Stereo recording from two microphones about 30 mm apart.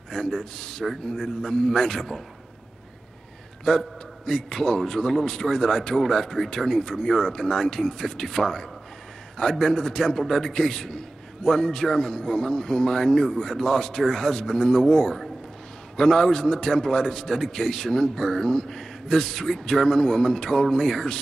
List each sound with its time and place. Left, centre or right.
0.1 s speech: centre
3.7 s speech: centre